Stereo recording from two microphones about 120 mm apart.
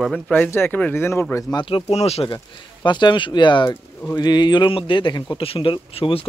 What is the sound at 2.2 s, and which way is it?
Speech, 40° left (ahead or behind).